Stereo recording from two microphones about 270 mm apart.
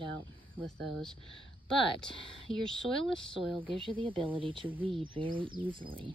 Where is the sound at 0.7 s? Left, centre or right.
Right.